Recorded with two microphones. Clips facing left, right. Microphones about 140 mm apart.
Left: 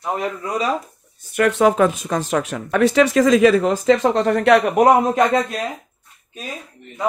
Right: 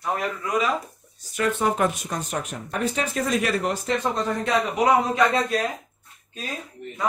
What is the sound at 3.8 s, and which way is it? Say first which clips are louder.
Speech: left 9 dB; 80° left.